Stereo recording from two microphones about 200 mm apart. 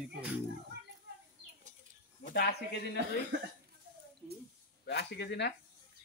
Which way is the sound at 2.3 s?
55° left (ahead or behind).